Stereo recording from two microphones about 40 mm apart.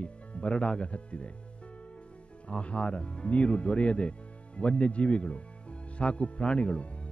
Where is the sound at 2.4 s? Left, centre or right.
Left.